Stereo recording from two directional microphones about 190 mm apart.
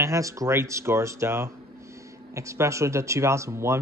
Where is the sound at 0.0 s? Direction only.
15° right (ahead or behind).